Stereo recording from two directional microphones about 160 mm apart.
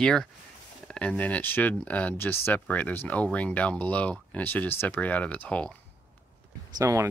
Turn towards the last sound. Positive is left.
turn(degrees=-20)  # may be behind; listen again after turning